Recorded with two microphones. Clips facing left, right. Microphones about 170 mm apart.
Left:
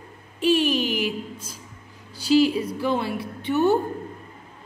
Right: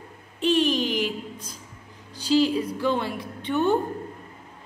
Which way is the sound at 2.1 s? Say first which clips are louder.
Left 2 dB; 10° left (ahead or behind).